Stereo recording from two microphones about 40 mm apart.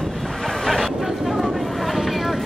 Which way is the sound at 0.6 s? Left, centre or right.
Centre.